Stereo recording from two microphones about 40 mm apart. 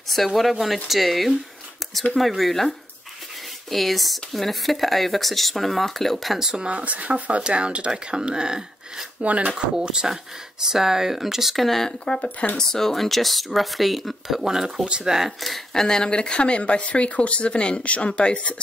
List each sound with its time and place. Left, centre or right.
0.3 s speech: centre
3.7 s speech: centre
6.4 s speech: right
6.7 s speech: right; by 9.0 s centre
9.2 s speech: right
9.8 s speech: centre
11.6 s speech: centre
12.0 s speech: left
12.5 s speech: centre
15.4 s speech: centre; by 18.6 s left